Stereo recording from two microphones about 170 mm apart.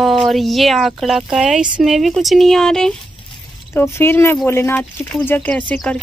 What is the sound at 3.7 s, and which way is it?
Speech, 15° left (ahead or behind).